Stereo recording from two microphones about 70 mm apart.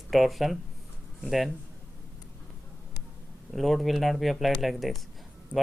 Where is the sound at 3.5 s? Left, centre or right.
Centre.